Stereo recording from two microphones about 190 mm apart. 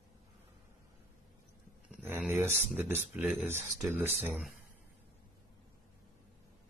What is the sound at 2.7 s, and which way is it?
Speech, 10° right (ahead or behind).